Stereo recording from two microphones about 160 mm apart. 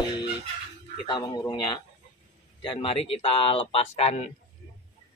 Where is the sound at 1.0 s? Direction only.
25° left (ahead or behind).